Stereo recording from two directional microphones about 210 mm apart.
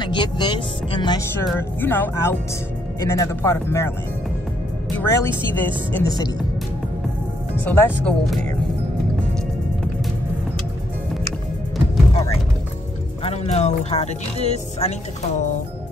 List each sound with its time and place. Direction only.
0.0 s speech: 20° left (ahead or behind)
4.9 s speech: 10° left (ahead or behind)
7.6 s speech: 10° left (ahead or behind)
13.2 s speech: 30° left (ahead or behind)